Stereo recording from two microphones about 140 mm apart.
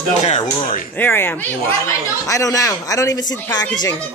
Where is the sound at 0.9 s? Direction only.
15° left (ahead or behind).